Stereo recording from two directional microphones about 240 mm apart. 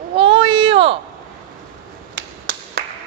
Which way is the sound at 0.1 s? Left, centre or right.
Right.